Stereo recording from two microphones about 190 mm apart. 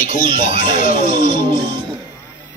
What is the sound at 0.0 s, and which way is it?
Speech, 45° left (ahead or behind).